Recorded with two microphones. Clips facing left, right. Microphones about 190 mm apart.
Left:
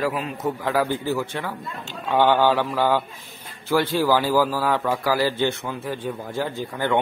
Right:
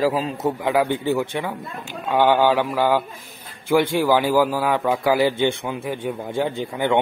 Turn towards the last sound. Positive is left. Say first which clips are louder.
# right 2 dB
turn(degrees=-15)  # may be behind; listen again after turning